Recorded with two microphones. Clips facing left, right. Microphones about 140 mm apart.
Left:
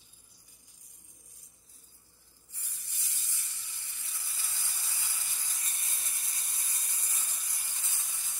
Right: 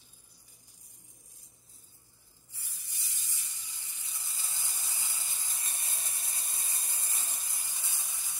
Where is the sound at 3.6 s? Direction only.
20° right (ahead or behind).